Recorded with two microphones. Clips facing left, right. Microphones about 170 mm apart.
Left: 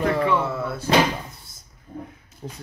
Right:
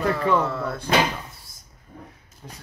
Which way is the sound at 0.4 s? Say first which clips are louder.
Even; 5° left (ahead or behind).